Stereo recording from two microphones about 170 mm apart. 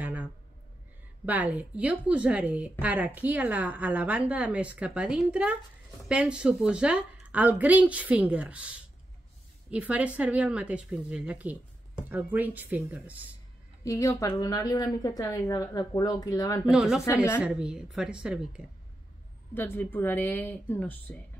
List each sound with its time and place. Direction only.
0.0 s a sound: 10° right (ahead or behind)
1.2 s speech: 10° right (ahead or behind)
13.8 s a woman's voice: 15° left (ahead or behind)
16.6 s speech: centre (ahead or behind)
19.5 s a woman's voice: 10° left (ahead or behind)